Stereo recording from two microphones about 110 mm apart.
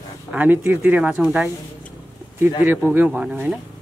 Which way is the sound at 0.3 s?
15° right (ahead or behind).